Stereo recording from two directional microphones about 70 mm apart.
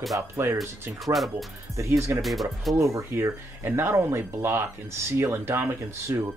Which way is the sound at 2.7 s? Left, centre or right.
Right.